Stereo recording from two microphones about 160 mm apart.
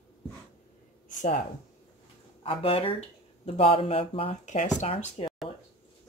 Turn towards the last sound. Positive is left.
turn(degrees=35)  # may be behind; listen again after turning